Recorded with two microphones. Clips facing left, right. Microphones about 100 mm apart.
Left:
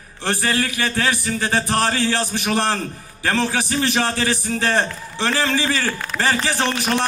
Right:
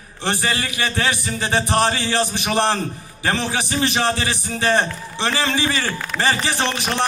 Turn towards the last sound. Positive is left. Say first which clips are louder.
# left 1 dB
turn(degrees=-20)  # may be behind; listen again after turning